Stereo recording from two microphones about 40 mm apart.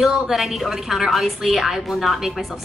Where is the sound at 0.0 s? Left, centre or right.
Centre.